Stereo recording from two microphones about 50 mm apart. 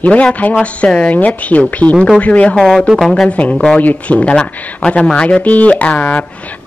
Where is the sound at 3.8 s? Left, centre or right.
Left.